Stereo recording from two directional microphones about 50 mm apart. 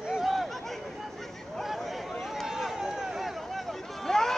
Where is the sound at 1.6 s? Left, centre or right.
Centre.